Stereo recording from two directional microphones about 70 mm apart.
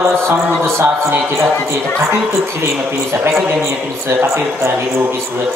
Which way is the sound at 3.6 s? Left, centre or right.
Right.